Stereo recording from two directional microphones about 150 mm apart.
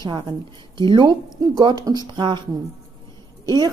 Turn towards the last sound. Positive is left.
turn(degrees=-25)  # may be behind; listen again after turning